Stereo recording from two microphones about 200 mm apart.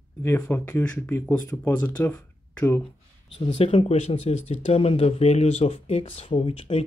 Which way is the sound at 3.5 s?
30° left (ahead or behind).